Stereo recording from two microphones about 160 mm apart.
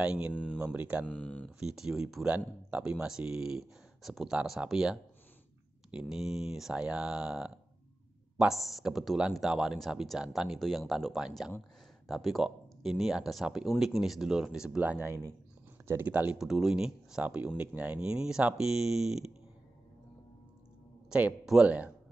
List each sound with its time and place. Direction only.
0.0 s speech: 5° right (ahead or behind)
0.3 s speech: 5° left (ahead or behind)
0.6 s speech: 5° right (ahead or behind)
1.0 s speech: 5° left (ahead or behind)
1.6 s speech: 5° right (ahead or behind)
21.1 s speech: 5° right (ahead or behind)